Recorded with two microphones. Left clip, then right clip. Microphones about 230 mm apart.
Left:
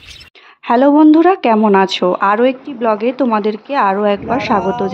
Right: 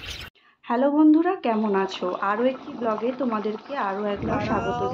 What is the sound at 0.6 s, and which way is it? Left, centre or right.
A woman's voice, left.